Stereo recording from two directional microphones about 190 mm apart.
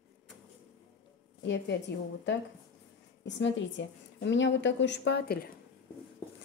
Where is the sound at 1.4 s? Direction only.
65° left (ahead or behind).